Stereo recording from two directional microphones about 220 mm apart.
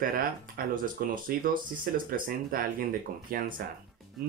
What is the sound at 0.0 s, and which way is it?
Speech, 40° right (ahead or behind).